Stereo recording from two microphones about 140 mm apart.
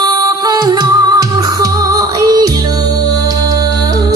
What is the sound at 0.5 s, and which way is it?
Music, 30° right (ahead or behind).